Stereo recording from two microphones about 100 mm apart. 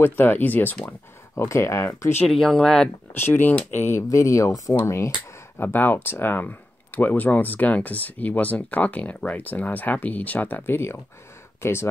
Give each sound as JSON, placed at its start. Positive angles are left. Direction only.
{"t": 0.0, "sound": "speech", "side_deg": 20}
{"t": 2.2, "sound": "speech", "side_deg": 5}
{"t": 3.2, "sound": "speech", "side_deg": 20}